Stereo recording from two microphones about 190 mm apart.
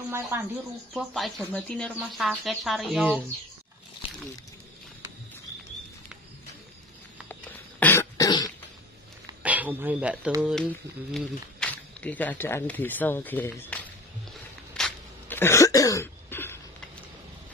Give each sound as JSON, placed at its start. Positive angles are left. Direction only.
{"t": 0.1, "sound": "speech", "side_deg": -15}
{"t": 0.9, "sound": "speech", "side_deg": 5}
{"t": 7.8, "sound": "cough", "side_deg": 15}
{"t": 9.4, "sound": "speech", "side_deg": -10}
{"t": 10.4, "sound": "speech", "side_deg": 5}
{"t": 14.7, "sound": "cough", "side_deg": 5}